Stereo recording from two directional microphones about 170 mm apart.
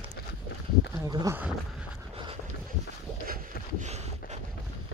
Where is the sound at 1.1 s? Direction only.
25° right (ahead or behind).